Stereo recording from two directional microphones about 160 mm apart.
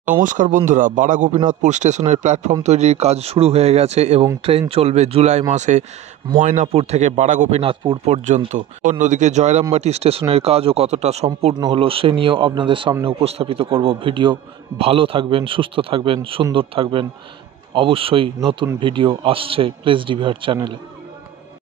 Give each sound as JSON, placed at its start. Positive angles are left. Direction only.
{"t": 0.1, "sound": "a man's voice", "side_deg": -55}
{"t": 7.6, "sound": "a man's voice", "side_deg": -35}
{"t": 8.8, "sound": "a man's voice", "side_deg": -50}
{"t": 11.5, "sound": "a man's voice", "side_deg": -30}